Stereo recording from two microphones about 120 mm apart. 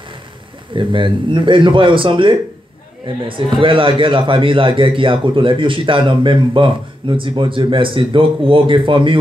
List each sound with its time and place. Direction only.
0.7 s a man's voice: 40° right (ahead or behind)